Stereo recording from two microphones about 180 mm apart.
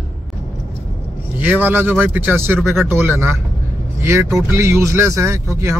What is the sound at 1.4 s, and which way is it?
A man's voice, 10° right (ahead or behind).